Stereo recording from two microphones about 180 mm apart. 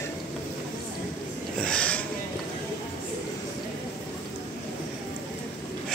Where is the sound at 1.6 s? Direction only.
5° left (ahead or behind).